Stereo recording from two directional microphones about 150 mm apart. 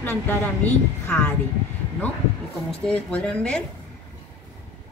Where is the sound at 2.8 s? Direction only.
5° left (ahead or behind).